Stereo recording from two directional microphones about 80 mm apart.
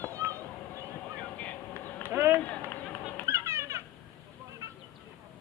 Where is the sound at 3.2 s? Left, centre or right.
Right.